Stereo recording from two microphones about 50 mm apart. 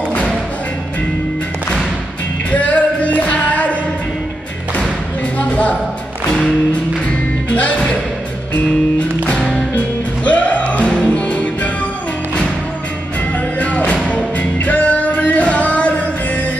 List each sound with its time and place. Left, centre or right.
2.5 s music: left
7.4 s music: left
9.3 s music: centre
10.2 s music: left
13.6 s music: left